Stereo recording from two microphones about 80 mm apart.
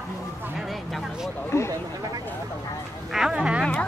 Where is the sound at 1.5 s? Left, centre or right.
Left.